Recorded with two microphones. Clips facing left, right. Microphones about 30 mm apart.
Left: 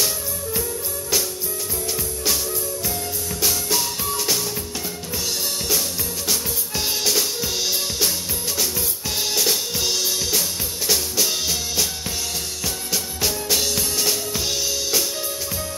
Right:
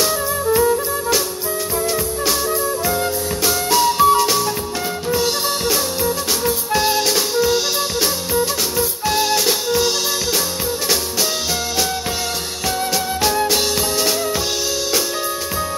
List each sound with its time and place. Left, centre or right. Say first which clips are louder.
0.0 s music: right 8 dB; right
3.4 s music: right 8 dB; centre
5.1 s drum kit: right 7 dB; right
6.8 s music: right 3 dB; centre
8.7 s drum kit: right 8 dB; centre
12.9 s music: right 5 dB; centre
13.5 s drum: right 4 dB; centre